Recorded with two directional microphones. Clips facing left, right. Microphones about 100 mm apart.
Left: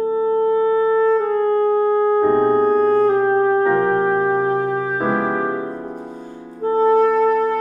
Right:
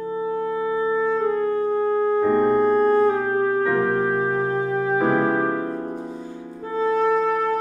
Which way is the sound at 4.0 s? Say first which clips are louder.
Left 4 dB; 5° left (ahead or behind).